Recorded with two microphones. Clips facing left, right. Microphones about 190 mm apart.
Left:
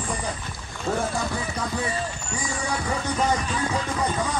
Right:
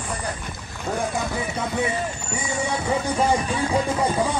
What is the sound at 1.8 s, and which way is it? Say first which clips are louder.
Speech: right 4 dB; 20° right (ahead or behind).